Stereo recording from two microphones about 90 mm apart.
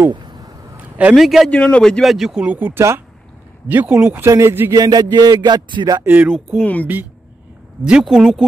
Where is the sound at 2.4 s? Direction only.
20° right (ahead or behind).